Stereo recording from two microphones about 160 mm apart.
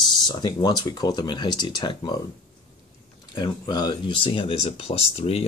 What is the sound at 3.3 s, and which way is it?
Speech, 25° left (ahead or behind).